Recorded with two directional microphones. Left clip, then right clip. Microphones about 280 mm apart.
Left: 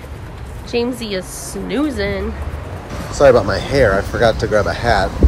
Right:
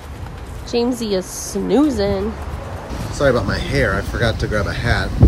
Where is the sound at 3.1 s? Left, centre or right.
Centre.